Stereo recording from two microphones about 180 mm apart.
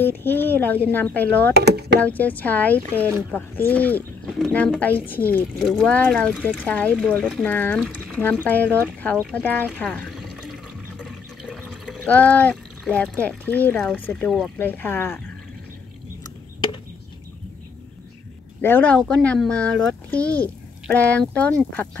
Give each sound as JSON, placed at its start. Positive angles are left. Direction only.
{"t": 0.0, "sound": "speech", "side_deg": 10}
{"t": 1.6, "sound": "speech", "side_deg": -65}
{"t": 2.0, "sound": "speech", "side_deg": 10}
{"t": 5.6, "sound": "speech", "side_deg": 0}
{"t": 11.0, "sound": "water", "side_deg": 5}
{"t": 13.7, "sound": "speech", "side_deg": 0}
{"t": 18.6, "sound": "speech", "side_deg": 10}